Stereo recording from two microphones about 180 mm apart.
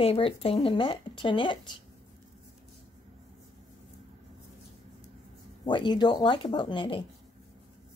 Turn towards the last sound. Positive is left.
turn(degrees=25)  # may be behind; listen again after turning